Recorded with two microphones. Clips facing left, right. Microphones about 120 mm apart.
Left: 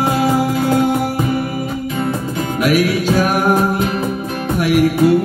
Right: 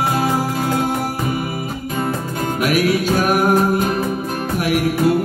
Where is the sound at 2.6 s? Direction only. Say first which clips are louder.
Left 2 dB; 40° right (ahead or behind).